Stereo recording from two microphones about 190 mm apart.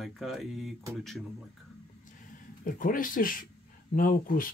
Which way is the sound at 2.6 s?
45° left (ahead or behind).